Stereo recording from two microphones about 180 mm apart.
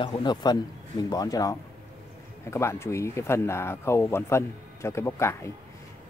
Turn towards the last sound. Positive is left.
turn(degrees=15)  # may be behind; listen again after turning